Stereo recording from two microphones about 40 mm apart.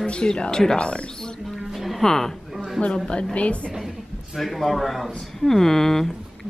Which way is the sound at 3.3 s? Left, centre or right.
Left.